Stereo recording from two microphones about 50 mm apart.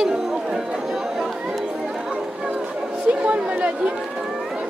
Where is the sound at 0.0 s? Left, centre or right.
Centre.